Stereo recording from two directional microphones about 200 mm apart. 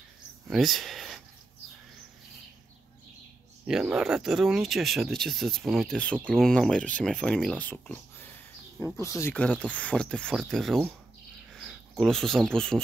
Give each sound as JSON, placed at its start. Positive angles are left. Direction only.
{"t": 0.5, "sound": "speech", "side_deg": 0}
{"t": 3.6, "sound": "speech", "side_deg": -5}